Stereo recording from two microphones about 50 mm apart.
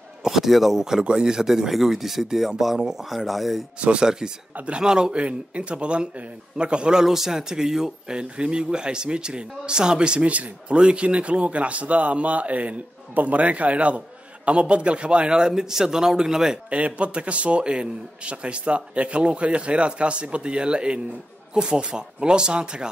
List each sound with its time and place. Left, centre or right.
0.2 s speech: centre
3.8 s speech: centre
16.7 s speech: right